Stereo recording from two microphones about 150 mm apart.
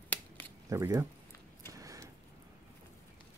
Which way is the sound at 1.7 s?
20° right (ahead or behind).